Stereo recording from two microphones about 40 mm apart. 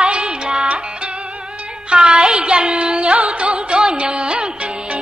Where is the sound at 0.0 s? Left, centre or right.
Right.